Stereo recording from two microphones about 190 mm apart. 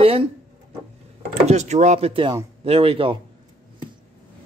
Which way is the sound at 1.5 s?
35° right (ahead or behind).